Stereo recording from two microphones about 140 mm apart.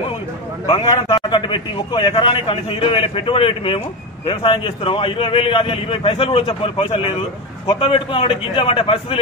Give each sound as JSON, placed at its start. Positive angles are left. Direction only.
{"t": 1.1, "sound": "a man's voice", "side_deg": 30}